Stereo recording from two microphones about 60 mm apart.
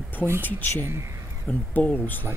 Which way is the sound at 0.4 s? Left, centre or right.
Left.